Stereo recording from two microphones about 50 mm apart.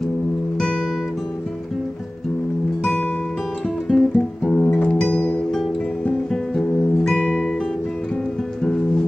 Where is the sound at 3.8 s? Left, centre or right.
Centre.